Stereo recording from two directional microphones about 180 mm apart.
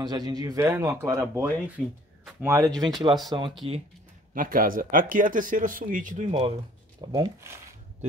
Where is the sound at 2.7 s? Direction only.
Centre (ahead or behind).